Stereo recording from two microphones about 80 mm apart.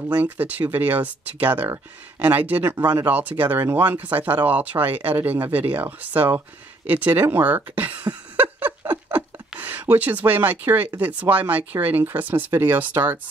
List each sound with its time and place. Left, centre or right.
0.1 s speech: right
9.1 s a sound: right
11.0 s speech: right